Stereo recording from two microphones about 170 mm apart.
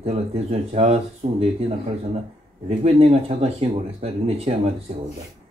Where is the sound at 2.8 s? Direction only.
40° right (ahead or behind).